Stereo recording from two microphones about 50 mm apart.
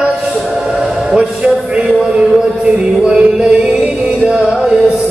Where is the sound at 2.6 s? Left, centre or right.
Centre.